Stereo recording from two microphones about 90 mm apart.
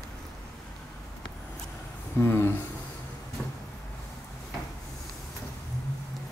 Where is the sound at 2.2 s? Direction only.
25° left (ahead or behind).